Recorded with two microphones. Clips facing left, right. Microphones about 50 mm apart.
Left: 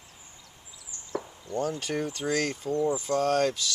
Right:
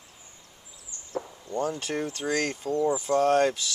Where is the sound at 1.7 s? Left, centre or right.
Centre.